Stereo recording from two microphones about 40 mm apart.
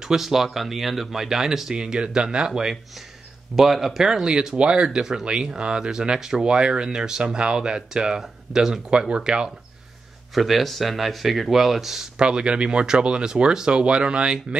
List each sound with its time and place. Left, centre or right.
0.0 s speech: centre
9.1 s speech: right
10.3 s speech: centre
12.2 s speech: right